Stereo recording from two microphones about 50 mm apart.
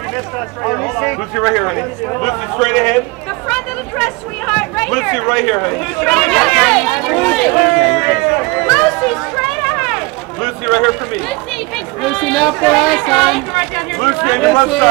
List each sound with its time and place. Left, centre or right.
0.7 s speech: centre
1.3 s speech: centre
3.4 s speech: centre
6.0 s speech: centre
8.6 s speech: centre
9.6 s a sound: centre
10.4 s speech: centre
12.1 s speech: centre